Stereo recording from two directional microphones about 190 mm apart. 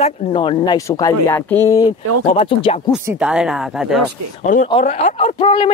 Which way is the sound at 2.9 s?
5° right (ahead or behind).